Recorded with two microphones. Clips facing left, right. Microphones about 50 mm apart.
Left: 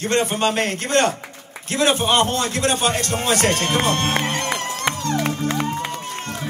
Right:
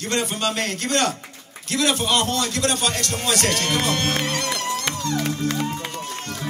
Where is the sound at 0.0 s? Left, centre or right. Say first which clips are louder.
Left 4 dB; left.